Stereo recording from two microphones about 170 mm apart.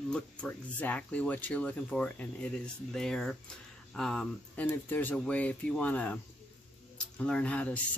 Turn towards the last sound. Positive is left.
turn(degrees=5)  # may be behind; listen again after turning